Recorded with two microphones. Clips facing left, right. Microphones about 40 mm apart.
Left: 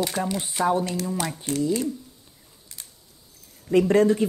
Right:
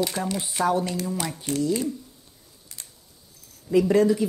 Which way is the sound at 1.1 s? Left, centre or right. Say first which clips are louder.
Left 1 dB; centre.